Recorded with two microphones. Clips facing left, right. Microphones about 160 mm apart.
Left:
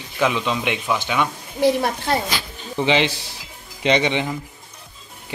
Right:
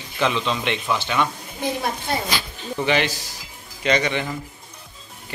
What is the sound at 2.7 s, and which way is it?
Speech, 20° left (ahead or behind).